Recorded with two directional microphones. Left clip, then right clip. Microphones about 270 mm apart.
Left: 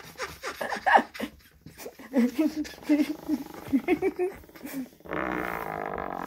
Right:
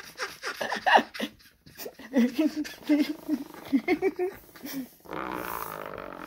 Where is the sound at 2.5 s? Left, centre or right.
Centre.